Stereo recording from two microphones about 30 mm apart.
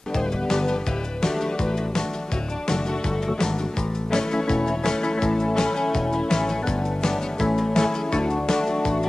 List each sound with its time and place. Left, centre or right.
0.5 s music: centre
4.1 s music: left